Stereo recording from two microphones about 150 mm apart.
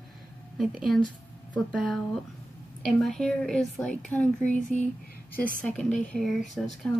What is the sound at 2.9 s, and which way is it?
Speech, 5° left (ahead or behind).